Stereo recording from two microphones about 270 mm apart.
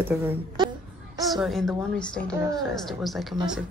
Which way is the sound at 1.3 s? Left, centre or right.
Centre.